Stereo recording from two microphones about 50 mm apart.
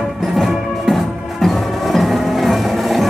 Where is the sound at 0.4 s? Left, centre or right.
Centre.